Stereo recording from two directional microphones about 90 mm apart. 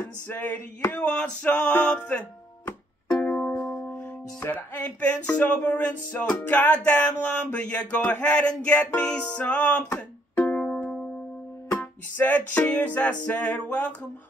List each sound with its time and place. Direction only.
0.3 s a sound: 20° left (ahead or behind)
0.9 s speech: 10° left (ahead or behind)
10.3 s music: 25° left (ahead or behind)
10.6 s music: 10° left (ahead or behind)
11.7 s speech: 20° left (ahead or behind)